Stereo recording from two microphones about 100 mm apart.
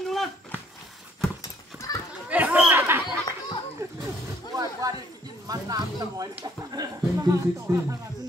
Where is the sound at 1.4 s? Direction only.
35° left (ahead or behind).